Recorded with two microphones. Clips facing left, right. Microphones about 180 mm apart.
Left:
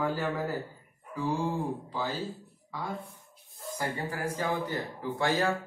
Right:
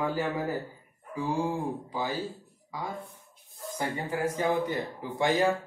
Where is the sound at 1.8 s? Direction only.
15° right (ahead or behind).